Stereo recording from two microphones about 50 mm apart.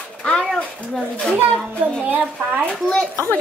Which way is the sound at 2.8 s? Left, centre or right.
Centre.